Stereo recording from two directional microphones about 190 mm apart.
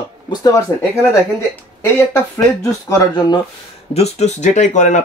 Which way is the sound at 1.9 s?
15° left (ahead or behind).